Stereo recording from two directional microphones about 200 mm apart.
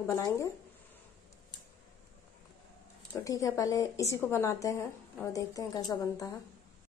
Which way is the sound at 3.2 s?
15° left (ahead or behind).